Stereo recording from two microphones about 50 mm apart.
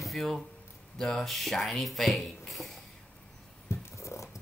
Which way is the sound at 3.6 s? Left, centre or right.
Left.